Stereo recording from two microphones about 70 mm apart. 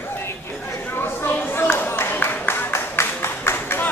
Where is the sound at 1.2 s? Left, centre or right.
Left.